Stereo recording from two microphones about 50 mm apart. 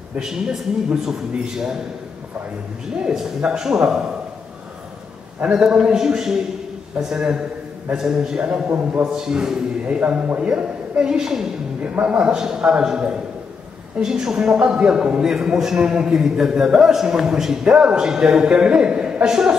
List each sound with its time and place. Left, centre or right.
0.2 s a man's voice: centre
3.0 s a man's voice: centre
5.5 s a man's voice: centre
8.6 s a man's voice: right
9.0 s a man's voice: centre
11.8 s a man's voice: right